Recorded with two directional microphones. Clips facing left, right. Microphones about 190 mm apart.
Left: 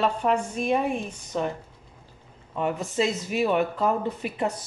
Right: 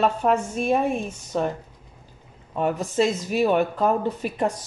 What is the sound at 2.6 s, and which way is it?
A woman's voice, 40° right (ahead or behind).